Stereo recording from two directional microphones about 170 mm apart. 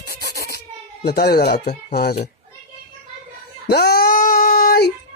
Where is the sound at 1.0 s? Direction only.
65° left (ahead or behind).